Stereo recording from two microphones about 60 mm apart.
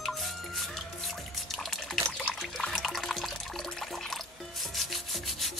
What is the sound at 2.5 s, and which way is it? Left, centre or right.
Water, centre.